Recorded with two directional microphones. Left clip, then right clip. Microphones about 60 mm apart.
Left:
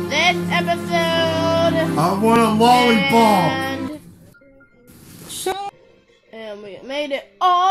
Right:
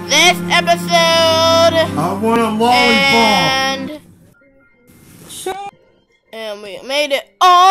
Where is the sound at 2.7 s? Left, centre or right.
Right.